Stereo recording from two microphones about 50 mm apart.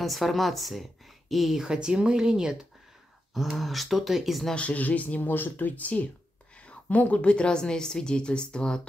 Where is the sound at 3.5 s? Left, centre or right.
Centre.